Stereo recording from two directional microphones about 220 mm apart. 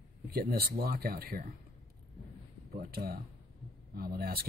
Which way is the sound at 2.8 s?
45° right (ahead or behind).